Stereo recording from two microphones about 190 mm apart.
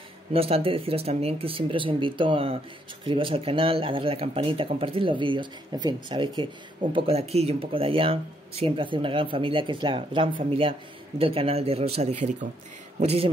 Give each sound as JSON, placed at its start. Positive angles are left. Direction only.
{"t": 0.3, "sound": "a man's voice", "side_deg": -30}